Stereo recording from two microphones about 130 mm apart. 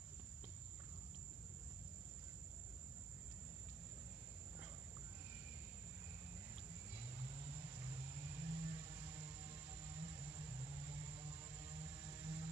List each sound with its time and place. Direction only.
6.9 s cattle: 15° right (ahead or behind)